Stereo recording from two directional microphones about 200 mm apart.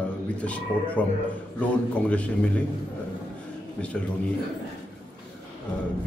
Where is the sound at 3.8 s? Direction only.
5° left (ahead or behind).